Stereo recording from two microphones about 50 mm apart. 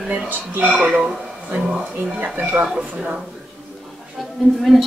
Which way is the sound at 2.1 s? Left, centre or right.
Right.